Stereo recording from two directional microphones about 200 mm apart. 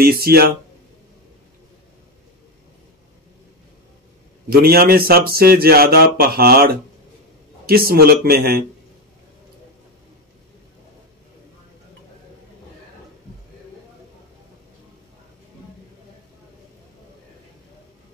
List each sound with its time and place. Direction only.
0.0 s a man's voice: 50° right (ahead or behind)
4.5 s a man's voice: 50° right (ahead or behind)